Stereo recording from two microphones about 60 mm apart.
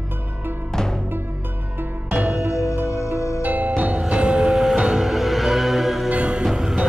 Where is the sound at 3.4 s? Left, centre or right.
Right.